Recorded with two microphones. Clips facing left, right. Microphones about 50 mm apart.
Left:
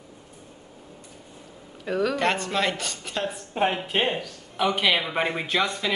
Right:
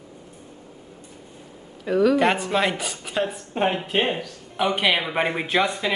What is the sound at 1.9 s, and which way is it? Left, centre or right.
A woman's voice, centre.